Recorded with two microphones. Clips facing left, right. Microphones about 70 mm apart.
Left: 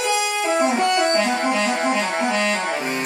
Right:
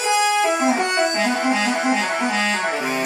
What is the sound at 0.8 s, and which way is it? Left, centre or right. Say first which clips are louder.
Music: left 1 dB; centre.